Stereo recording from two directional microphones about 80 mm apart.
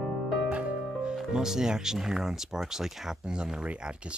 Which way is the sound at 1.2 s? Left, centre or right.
Centre.